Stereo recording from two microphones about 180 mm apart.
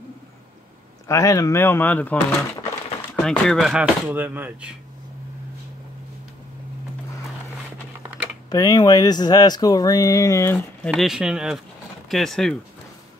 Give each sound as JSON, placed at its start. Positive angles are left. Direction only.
{"t": 1.0, "sound": "speech", "side_deg": 15}
{"t": 8.5, "sound": "speech", "side_deg": 20}
{"t": 10.9, "sound": "speech", "side_deg": -5}